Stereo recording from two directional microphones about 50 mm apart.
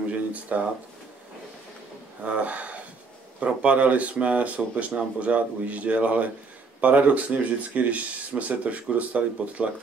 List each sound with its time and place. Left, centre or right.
0.1 s speech: right
2.2 s speech: right